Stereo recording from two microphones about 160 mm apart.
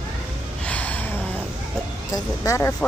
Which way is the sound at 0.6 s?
10° left (ahead or behind).